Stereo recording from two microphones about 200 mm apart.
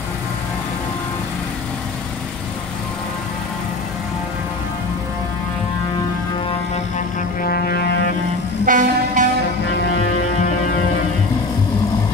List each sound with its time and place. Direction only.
7.4 s music: 50° left (ahead or behind)
8.6 s music: 40° right (ahead or behind)